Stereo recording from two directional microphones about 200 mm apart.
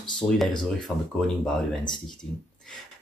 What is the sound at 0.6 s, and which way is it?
Speech, 5° left (ahead or behind).